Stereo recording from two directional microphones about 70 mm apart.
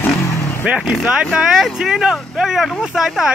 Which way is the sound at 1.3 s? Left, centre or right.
Centre.